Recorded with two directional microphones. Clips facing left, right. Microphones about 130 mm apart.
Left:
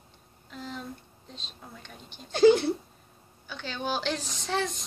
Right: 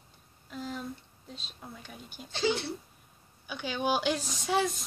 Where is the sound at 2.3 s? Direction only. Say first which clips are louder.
Left 11 dB; 50° left (ahead or behind).